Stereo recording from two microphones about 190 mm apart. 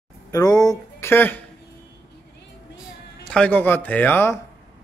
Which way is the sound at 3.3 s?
5° left (ahead or behind).